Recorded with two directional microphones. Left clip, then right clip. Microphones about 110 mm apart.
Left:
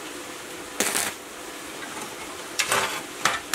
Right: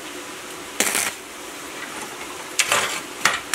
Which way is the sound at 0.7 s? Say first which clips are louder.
Right 4 dB; centre (ahead or behind).